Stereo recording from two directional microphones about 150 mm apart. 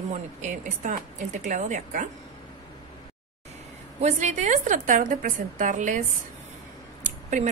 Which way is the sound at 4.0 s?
50° right (ahead or behind).